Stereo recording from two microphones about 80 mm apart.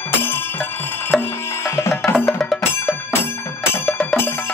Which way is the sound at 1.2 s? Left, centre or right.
Left.